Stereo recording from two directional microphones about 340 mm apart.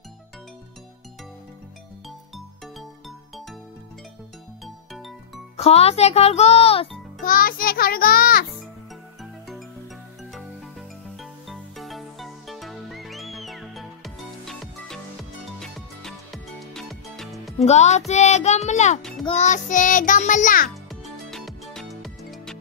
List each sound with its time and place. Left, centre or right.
2.0 s music: centre
4.9 s music: centre
5.6 s a child's voice: centre
11.1 s music: centre
17.6 s a child's voice: centre
20.9 s music: centre